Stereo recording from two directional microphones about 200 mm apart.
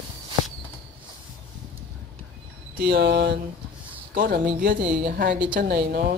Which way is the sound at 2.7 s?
50° right (ahead or behind).